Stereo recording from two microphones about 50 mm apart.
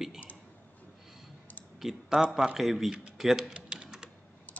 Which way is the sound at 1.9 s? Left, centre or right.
Centre.